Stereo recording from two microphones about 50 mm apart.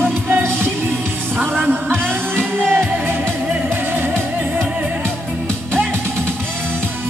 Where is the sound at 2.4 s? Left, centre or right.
Centre.